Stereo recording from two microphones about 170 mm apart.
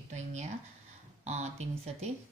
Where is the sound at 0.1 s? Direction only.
45° right (ahead or behind).